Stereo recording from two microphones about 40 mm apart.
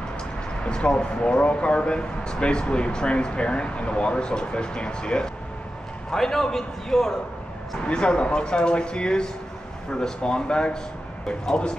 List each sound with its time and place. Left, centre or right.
0.7 s speech: left
6.1 s a man's voice: centre
7.8 s speech: left